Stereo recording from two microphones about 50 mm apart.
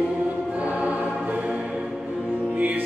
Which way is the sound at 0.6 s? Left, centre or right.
Right.